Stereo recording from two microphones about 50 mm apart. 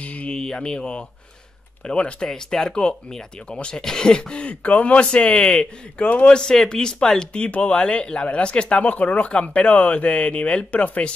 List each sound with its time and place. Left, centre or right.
0.0 s a sound: left
0.4 s speech: centre
6.0 s speech: left
6.3 s speech: centre; by 11.1 s left